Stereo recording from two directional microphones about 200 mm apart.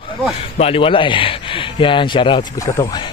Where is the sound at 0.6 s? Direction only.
30° left (ahead or behind).